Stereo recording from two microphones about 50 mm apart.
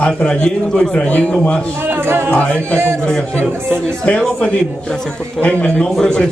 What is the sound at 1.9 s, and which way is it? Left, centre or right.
Music, right.